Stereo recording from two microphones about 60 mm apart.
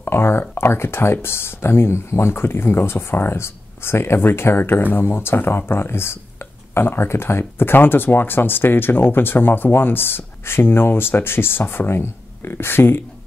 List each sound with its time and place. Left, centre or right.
0.0 s speech: left